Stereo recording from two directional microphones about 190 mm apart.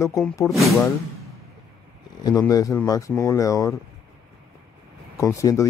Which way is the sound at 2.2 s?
20° left (ahead or behind).